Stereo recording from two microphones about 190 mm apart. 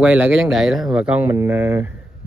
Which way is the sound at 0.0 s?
10° right (ahead or behind).